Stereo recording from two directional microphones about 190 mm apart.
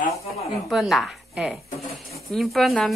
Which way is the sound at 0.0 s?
35° left (ahead or behind).